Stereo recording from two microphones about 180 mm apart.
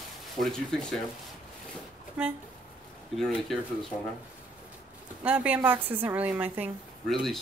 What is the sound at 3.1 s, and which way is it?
Speech, centre (ahead or behind).